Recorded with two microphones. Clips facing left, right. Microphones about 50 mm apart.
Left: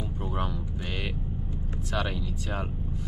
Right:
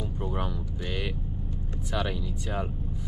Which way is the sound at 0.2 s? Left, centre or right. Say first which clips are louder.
Left 1 dB; centre.